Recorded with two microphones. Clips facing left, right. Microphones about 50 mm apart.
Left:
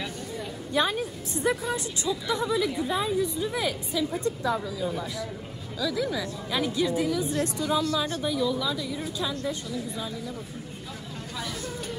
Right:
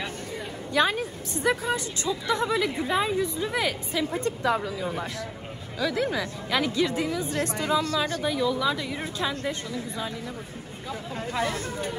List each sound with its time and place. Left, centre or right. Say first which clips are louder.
0.8 s a woman's voice: right 2 dB; right
8.2 s a woman's voice: right 1 dB; centre
8.6 s a woman's voice: right 3 dB; right
11.3 s speech: right 6 dB; right